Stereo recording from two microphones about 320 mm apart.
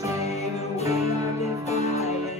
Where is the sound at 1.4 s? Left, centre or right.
Centre.